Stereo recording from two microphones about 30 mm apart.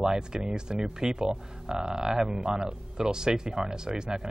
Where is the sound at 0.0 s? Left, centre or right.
Right.